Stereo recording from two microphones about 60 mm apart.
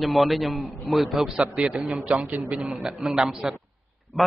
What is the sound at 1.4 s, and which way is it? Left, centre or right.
A man's voice, right.